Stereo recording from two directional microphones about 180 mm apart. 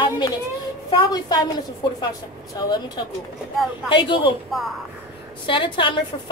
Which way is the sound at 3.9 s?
25° left (ahead or behind).